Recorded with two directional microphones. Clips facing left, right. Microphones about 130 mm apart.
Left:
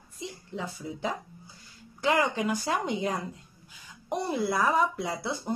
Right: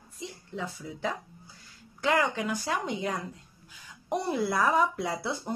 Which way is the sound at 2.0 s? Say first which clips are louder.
Left 1 dB; 15° left (ahead or behind).